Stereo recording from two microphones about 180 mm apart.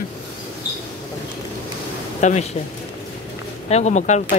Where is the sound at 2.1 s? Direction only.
40° left (ahead or behind).